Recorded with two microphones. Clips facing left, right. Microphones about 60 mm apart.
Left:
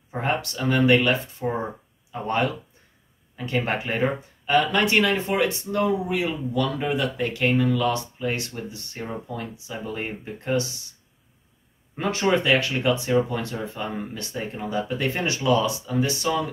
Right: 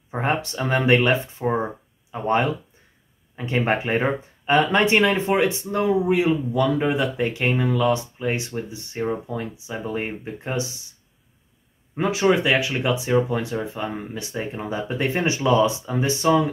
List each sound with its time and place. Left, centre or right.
0.1 s speech: right
11.9 s speech: centre